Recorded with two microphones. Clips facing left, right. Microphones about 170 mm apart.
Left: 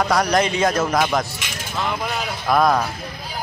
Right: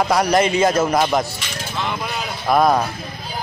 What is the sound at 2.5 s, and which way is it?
Speech, 5° right (ahead or behind).